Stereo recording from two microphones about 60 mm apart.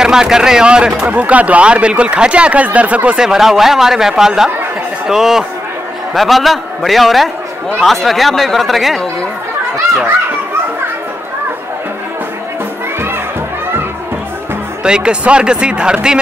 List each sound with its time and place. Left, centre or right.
0.0 s speech: centre
3.2 s speech: centre
14.8 s speech: centre